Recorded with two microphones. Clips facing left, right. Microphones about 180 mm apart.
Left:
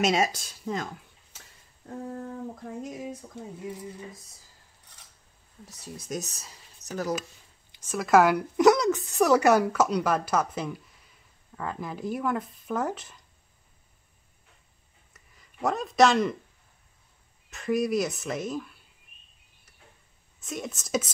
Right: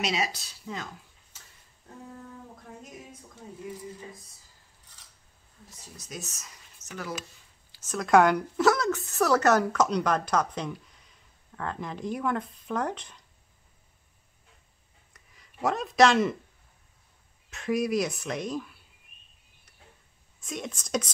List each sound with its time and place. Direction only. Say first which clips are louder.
0.0 s speech: left 6 dB; 50° left (ahead or behind)
3.4 s speech: left 6 dB; 65° left (ahead or behind)
6.0 s speech: left 7 dB; 40° left (ahead or behind)
7.7 s speech: even; 10° left (ahead or behind)
8.5 s speech: left 7 dB; 15° left (ahead or behind)
15.1 s speech: left 1 dB; centre (ahead or behind)
17.5 s speech: left 1 dB; centre (ahead or behind)
20.3 s speech: left 1 dB; centre (ahead or behind)